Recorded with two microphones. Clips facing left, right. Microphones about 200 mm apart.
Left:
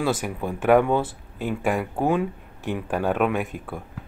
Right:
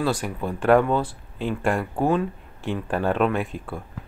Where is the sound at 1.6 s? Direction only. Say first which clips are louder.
Even; 5° left (ahead or behind).